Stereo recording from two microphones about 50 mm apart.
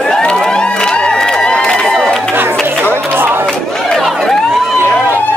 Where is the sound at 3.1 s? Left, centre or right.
Right.